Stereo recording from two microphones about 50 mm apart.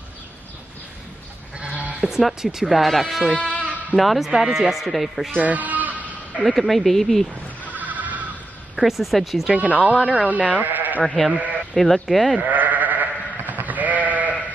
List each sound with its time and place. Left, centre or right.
1.6 s sheep: right
2.0 s speech: centre
3.3 s speech: left
3.9 s speech: centre
5.4 s sheep: right
6.4 s speech: centre
7.7 s sheep: right
8.7 s speech: centre
9.5 s speech: right
9.8 s speech: left
10.2 s speech: right
11.1 s speech: centre
12.4 s sheep: right